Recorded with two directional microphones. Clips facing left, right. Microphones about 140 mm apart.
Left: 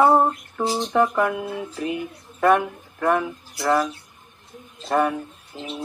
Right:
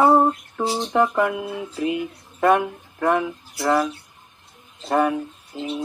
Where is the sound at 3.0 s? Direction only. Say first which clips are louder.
Right 1 dB; 30° right (ahead or behind).